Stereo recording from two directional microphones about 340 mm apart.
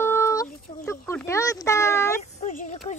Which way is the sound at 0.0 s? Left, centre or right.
Centre.